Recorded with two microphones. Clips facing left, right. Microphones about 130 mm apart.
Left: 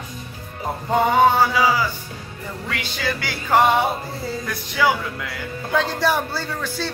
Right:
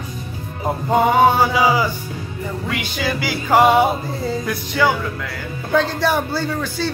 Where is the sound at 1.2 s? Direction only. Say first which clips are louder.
Right 2 dB; 15° right (ahead or behind).